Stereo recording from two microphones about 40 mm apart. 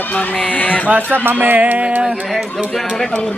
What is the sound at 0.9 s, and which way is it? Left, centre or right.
Speech, right.